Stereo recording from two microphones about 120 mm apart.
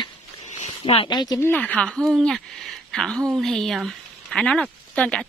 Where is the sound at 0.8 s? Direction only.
55° left (ahead or behind).